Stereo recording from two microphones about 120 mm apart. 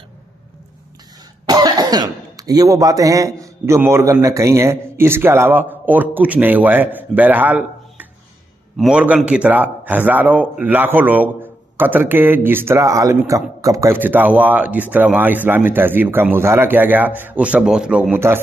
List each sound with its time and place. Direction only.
1.4 s speech: 35° right (ahead or behind); by 18.2 s 10° right (ahead or behind)